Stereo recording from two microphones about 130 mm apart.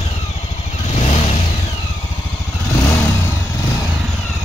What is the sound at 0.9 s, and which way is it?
Vehicle, 60° left (ahead or behind).